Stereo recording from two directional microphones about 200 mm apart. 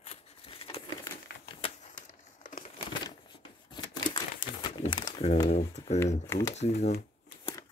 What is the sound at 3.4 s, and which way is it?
Crumpling, 25° left (ahead or behind).